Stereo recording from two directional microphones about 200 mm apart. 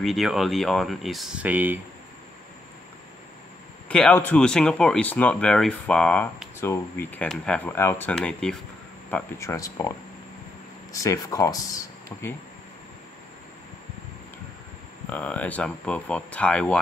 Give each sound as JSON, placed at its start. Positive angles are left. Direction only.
{"t": 0.0, "sound": "speech", "side_deg": 0}
{"t": 3.9, "sound": "speech", "side_deg": 5}
{"t": 9.1, "sound": "speech", "side_deg": 15}
{"t": 15.0, "sound": "speech", "side_deg": 10}